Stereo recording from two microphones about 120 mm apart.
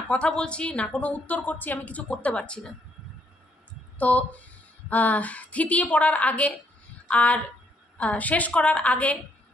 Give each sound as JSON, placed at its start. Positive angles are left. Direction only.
{"t": 0.1, "sound": "a woman's voice", "side_deg": 10}
{"t": 4.0, "sound": "a woman's voice", "side_deg": 10}